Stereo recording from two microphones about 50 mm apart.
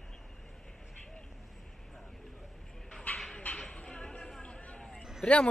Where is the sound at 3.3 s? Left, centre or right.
Left.